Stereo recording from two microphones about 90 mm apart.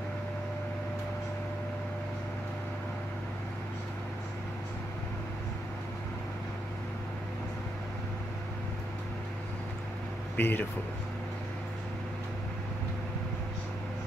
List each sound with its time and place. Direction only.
10.3 s speech: 20° left (ahead or behind)